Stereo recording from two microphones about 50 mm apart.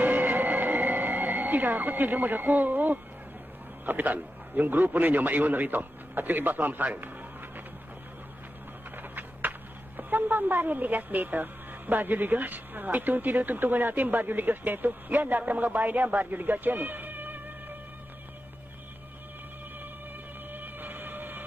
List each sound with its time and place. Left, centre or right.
0.0 s music: right
3.8 s a man's voice: right
8.9 s speech: right
20.5 s train: right